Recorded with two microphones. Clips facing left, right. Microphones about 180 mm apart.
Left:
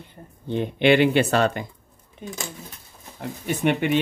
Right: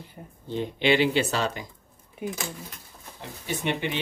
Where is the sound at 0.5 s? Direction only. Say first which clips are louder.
Left 5 dB; 60° left (ahead or behind).